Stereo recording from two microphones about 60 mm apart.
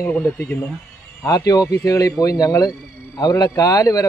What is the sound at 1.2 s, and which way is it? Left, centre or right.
Speech, left.